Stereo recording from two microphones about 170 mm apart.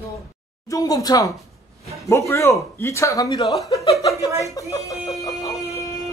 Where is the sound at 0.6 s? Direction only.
20° left (ahead or behind).